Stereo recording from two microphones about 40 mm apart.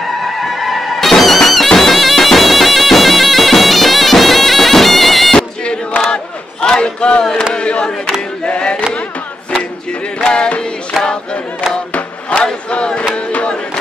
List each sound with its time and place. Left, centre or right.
0.4 s music: centre
5.7 s choir: left
7.5 s a sound: left
10.2 s a sound: left
11.9 s chant: left
12.7 s music: left